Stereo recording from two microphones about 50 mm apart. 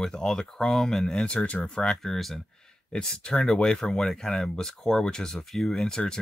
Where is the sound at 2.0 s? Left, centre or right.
Centre.